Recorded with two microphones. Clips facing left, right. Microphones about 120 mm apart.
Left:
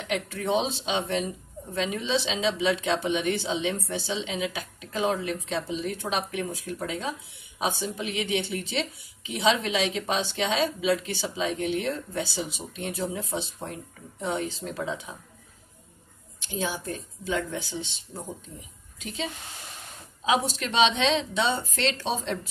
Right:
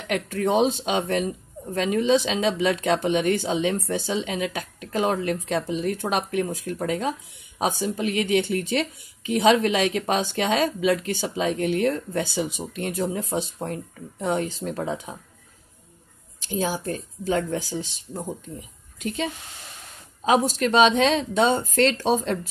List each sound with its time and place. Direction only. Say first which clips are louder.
0.1 s speech: right 4 dB; 50° right (ahead or behind)
16.3 s a woman's voice: right 5 dB; 40° right (ahead or behind)
20.2 s speech: right 5 dB; 45° right (ahead or behind)